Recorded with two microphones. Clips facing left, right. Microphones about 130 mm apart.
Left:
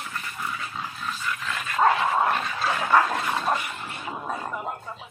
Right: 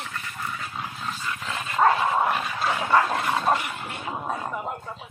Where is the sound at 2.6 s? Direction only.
20° right (ahead or behind).